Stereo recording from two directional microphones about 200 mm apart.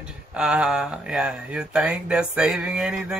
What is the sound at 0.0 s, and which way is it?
Speech, 5° right (ahead or behind).